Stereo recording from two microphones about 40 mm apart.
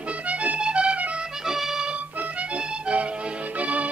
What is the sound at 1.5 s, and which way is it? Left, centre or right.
Music, centre.